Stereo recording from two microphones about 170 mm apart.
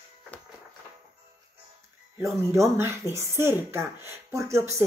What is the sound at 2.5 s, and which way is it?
A woman's voice, 15° right (ahead or behind).